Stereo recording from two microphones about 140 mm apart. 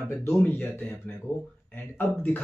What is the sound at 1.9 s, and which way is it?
Speech, 15° left (ahead or behind).